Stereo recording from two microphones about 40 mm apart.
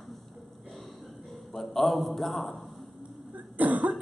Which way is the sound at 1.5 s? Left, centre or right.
Centre.